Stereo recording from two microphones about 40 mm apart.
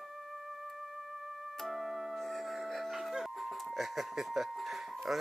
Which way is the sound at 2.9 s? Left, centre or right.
Centre.